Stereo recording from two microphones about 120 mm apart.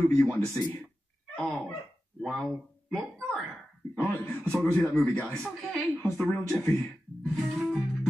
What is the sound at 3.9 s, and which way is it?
A man's voice, 15° left (ahead or behind).